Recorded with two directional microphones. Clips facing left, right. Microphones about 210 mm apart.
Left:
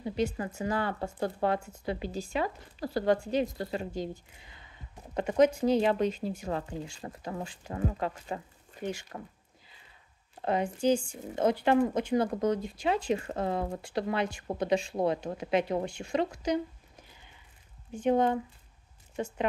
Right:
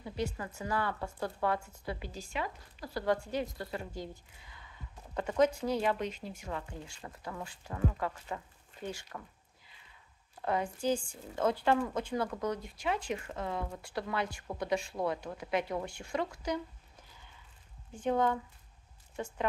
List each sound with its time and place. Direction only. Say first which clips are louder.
0.0 s speech: left 6 dB; 25° left (ahead or behind); by 3.1 s 40° left (ahead or behind)
3.1 s speech: left 5 dB; 25° left (ahead or behind)
10.4 s speech: left 5 dB; 20° left (ahead or behind); by 13.7 s 35° left (ahead or behind)
13.7 s speech: left 5 dB; 25° left (ahead or behind)
18.0 s speech: left 4 dB; 20° left (ahead or behind)